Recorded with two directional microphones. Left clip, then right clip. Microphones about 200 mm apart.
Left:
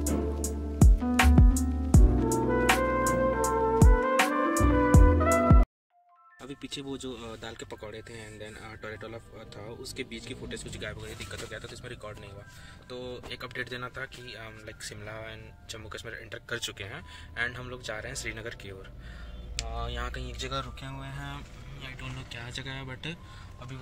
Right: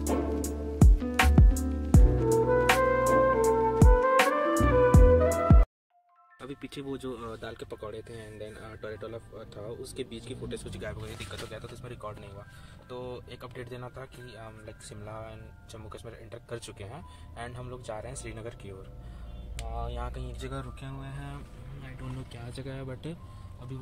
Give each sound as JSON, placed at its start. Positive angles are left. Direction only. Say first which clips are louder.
{"t": 0.0, "sound": "music", "louder": "right 2 dB", "side_deg": 0}
{"t": 6.4, "sound": "speech", "louder": "even", "side_deg": 0}
{"t": 19.6, "sound": "speech", "louder": "left 1 dB", "side_deg": 30}
{"t": 19.9, "sound": "speech", "louder": "left 3 dB", "side_deg": 0}